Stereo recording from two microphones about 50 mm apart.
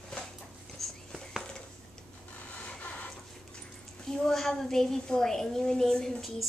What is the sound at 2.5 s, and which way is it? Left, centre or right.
Printer, left.